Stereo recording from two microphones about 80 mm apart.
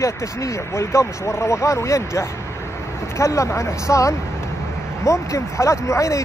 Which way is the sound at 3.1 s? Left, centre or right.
Left.